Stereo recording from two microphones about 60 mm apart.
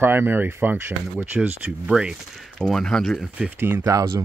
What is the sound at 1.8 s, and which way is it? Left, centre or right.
Speech, centre.